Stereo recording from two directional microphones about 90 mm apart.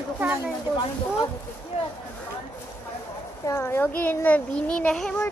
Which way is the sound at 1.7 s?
90° left.